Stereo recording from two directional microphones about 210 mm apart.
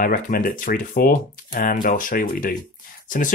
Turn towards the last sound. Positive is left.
turn(degrees=40)  # may be behind; listen again after turning